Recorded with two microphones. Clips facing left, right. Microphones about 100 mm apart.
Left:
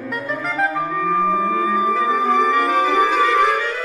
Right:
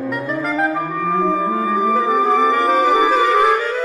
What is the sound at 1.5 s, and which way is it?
Music, 35° right (ahead or behind).